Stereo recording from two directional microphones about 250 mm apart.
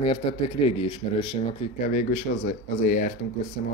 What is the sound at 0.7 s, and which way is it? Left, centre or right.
Speech, centre.